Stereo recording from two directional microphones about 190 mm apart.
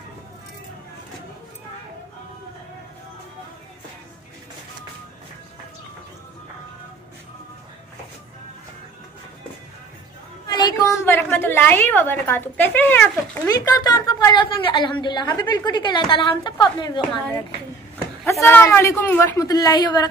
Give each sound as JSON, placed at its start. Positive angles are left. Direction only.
{"t": 10.4, "sound": "a woman's voice", "side_deg": 20}
{"t": 18.2, "sound": "a woman's voice", "side_deg": 10}